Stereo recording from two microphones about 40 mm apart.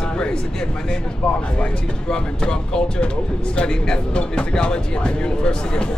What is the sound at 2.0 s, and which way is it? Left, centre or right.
Speech, centre.